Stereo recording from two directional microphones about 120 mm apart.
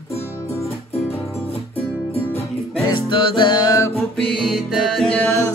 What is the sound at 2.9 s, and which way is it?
Music, 45° left (ahead or behind).